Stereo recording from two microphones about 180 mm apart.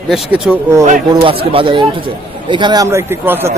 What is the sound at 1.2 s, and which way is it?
Speech, 30° right (ahead or behind).